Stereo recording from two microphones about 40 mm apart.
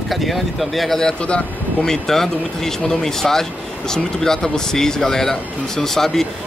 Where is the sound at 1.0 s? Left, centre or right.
Left.